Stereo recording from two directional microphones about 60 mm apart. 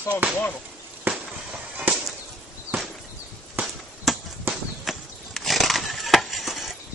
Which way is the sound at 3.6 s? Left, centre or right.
Right.